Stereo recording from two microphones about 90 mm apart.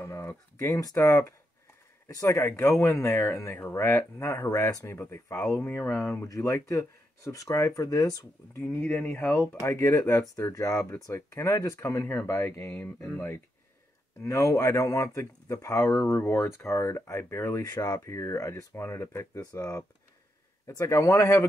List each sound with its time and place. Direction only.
0.0 s speech: 30° left (ahead or behind)
6.2 s speech: 35° left (ahead or behind)
8.7 s speech: 25° left (ahead or behind)
12.6 s speech: 15° left (ahead or behind)
14.2 s speech: 35° left (ahead or behind)